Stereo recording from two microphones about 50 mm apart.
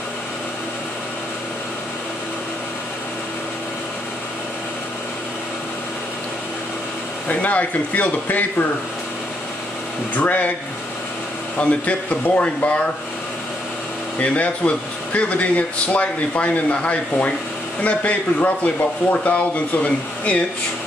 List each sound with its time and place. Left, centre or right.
7.2 s speech: left
10.1 s speech: left
11.5 s speech: left
14.2 s speech: left